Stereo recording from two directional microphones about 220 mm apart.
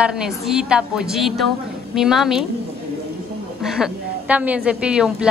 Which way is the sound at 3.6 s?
5° right (ahead or behind).